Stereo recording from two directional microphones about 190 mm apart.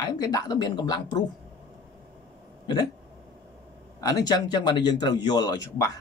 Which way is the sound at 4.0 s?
20° left (ahead or behind).